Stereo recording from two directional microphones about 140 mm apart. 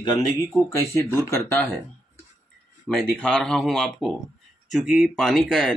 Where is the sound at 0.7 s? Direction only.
20° left (ahead or behind).